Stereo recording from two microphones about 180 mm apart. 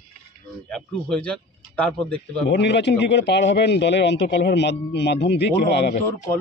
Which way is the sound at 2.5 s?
70° left (ahead or behind).